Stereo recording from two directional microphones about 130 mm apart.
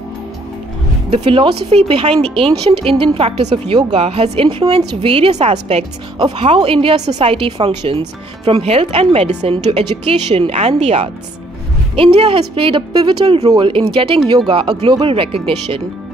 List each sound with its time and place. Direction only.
1.1 s a woman's voice: 45° right (ahead or behind)
6.1 s speech: 35° right (ahead or behind)
6.4 s a woman's voice: 45° right (ahead or behind)